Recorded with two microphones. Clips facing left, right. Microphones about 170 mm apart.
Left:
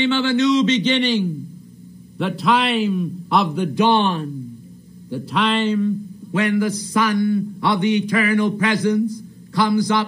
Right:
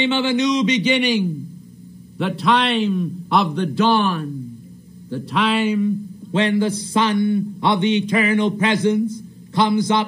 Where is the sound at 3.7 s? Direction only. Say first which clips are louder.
Left 1 dB; 20° left (ahead or behind).